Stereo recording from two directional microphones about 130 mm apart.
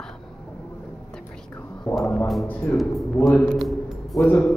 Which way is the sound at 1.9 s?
5° left (ahead or behind).